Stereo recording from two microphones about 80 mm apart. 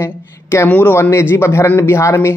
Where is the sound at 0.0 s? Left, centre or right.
Left.